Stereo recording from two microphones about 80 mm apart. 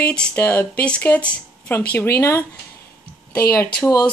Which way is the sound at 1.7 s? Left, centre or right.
Left.